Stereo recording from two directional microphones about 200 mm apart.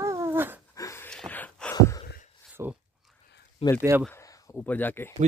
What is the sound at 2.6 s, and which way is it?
Speech, 15° right (ahead or behind).